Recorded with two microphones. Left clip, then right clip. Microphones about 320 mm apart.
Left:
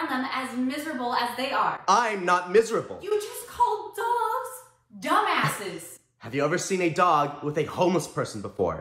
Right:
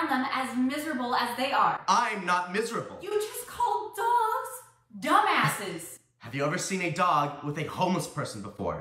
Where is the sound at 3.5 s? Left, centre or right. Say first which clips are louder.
Left 4 dB; centre.